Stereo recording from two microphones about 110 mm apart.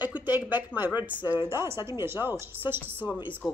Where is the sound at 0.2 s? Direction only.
15° right (ahead or behind).